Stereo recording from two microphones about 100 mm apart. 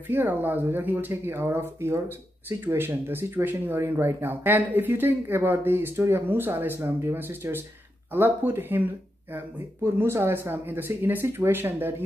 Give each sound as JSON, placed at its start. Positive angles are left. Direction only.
{"t": 0.1, "sound": "speech", "side_deg": -20}